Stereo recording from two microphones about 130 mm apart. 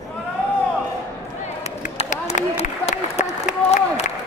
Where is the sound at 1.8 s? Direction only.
65° left (ahead or behind).